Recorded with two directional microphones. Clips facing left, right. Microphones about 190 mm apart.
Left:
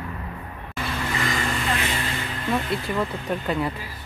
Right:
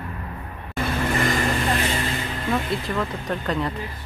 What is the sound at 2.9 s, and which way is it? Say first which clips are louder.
Speech: even; 10° left (ahead or behind).